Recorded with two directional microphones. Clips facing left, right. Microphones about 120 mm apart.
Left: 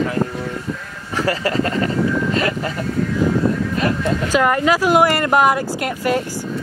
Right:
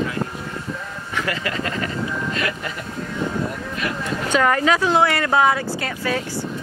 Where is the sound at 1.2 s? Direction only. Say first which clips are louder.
Left 7 dB; 35° left (ahead or behind).